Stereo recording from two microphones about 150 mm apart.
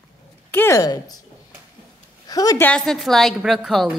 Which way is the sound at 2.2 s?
25° left (ahead or behind).